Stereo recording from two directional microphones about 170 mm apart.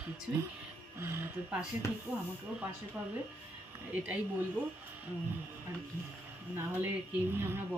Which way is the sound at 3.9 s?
10° right (ahead or behind).